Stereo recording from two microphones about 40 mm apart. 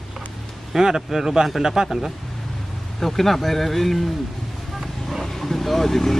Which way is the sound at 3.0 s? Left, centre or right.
Centre.